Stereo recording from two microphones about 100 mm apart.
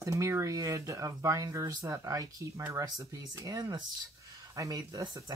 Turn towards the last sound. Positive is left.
turn(degrees=-40)  # may be behind; listen again after turning